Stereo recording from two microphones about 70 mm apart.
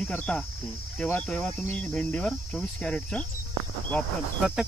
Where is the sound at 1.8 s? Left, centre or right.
Centre.